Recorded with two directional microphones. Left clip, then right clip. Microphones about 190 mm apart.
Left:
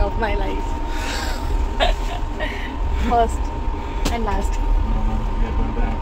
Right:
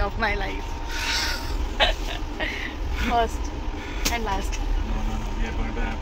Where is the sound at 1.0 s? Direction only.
30° left (ahead or behind).